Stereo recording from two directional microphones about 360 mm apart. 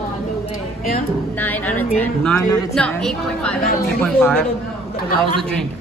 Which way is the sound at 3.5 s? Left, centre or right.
Left.